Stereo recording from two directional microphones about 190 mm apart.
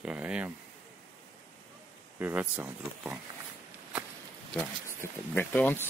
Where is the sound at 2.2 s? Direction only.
10° right (ahead or behind).